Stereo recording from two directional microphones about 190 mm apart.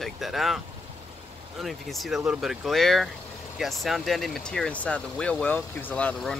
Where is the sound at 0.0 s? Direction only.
Centre (ahead or behind).